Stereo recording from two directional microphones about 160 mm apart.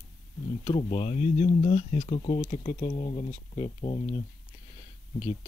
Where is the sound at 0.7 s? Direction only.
40° left (ahead or behind).